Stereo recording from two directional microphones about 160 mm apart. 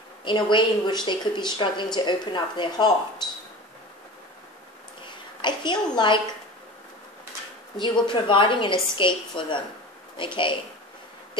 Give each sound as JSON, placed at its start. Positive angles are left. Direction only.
{"t": 0.2, "sound": "a woman's voice", "side_deg": 30}
{"t": 5.4, "sound": "a woman's voice", "side_deg": 30}
{"t": 7.7, "sound": "a woman's voice", "side_deg": 30}